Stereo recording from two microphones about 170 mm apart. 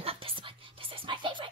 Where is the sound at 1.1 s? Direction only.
30° right (ahead or behind).